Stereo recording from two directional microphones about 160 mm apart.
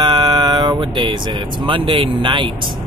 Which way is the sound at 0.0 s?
30° right (ahead or behind).